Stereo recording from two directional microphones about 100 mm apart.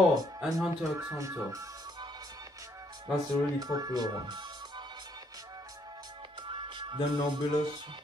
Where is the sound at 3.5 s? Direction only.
40° right (ahead or behind).